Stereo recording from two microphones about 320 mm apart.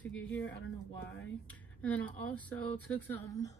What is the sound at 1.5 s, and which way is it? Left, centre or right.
Speech, centre.